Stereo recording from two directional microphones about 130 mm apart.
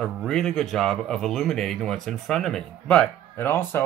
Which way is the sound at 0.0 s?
Centre (ahead or behind).